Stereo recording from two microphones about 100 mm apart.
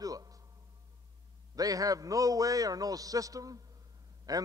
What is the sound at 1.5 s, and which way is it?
A man's voice, 35° right (ahead or behind).